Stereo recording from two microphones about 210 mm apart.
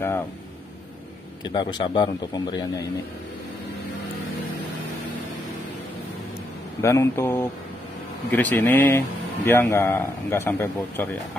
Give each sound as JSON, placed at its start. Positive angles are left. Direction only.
{"t": 1.4, "sound": "a man's voice", "side_deg": 20}
{"t": 6.8, "sound": "speech", "side_deg": 15}